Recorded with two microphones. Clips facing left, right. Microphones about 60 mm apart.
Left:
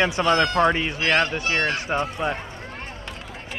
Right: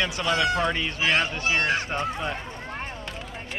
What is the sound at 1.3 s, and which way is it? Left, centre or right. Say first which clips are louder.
Speech: left 1 dB; left.